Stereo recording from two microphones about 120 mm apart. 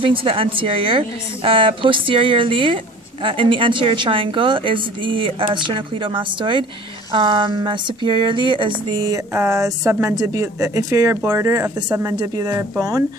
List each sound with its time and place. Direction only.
0.0 s a woman's voice: 45° right (ahead or behind)
7.2 s a sound: 40° right (ahead or behind)
9.3 s speech: 25° right (ahead or behind)